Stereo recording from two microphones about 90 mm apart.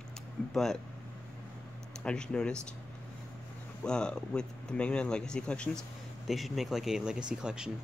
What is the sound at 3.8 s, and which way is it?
Speech, 10° left (ahead or behind).